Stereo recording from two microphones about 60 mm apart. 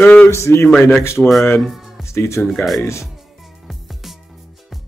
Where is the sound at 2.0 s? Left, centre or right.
Left.